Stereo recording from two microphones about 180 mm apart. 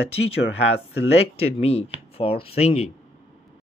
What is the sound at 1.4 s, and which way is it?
Speech, 35° left (ahead or behind).